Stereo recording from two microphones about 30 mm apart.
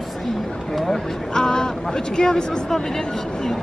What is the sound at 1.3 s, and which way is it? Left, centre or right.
Speech, left.